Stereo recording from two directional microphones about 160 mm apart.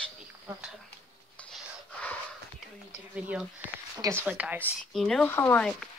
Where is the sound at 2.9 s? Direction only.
10° right (ahead or behind).